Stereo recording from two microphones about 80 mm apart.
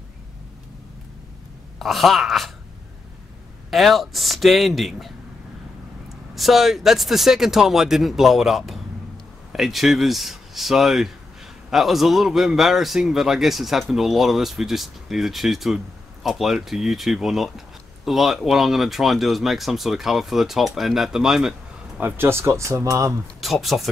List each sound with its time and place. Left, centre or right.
1.8 s a man's voice: centre
3.7 s a man's voice: centre
6.3 s a man's voice: centre
22.0 s speech: right
23.4 s a man's voice: centre